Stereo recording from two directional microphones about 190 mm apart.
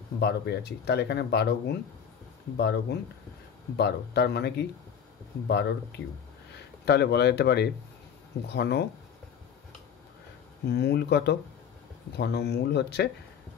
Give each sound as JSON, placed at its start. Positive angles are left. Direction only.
{"t": 0.2, "sound": "speech", "side_deg": 60}
{"t": 10.7, "sound": "speech", "side_deg": 60}